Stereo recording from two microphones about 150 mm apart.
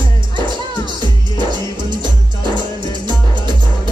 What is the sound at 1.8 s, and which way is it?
Music, 30° right (ahead or behind).